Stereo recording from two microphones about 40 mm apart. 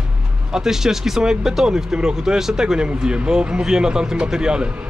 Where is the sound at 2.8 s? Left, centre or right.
Right.